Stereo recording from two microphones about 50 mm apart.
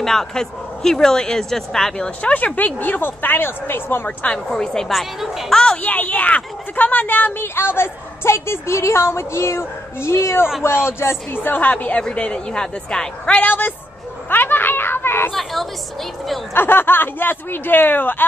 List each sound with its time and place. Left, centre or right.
0.0 s speech: centre
2.2 s a woman's voice: left
4.5 s speech: centre
4.8 s a woman's voice: centre
5.5 s speech: centre
5.8 s speech: left
11.3 s a woman's voice: left; by 13.4 s centre
13.4 s a woman's voice: left
15.3 s a woman's voice: centre
16.5 s speech: left